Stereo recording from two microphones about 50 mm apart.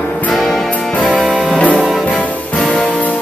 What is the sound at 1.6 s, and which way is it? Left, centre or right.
Music, left.